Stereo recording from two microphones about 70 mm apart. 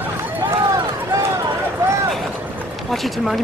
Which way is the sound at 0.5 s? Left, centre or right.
Right.